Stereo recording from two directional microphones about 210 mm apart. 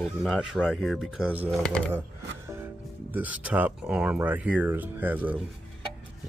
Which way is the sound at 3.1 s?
5° right (ahead or behind).